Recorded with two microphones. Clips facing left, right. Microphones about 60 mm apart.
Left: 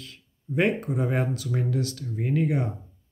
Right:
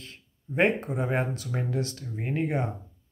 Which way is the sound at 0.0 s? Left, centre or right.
Right.